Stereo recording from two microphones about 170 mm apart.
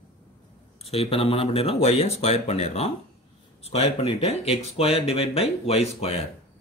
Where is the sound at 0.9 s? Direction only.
35° left (ahead or behind).